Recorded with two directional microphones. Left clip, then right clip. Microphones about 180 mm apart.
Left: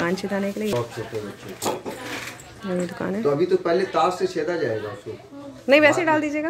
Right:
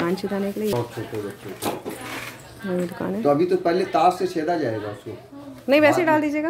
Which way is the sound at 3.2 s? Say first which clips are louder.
Right 2 dB; 50° right (ahead or behind).